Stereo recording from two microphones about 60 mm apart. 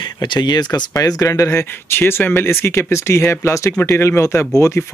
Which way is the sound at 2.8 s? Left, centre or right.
Left.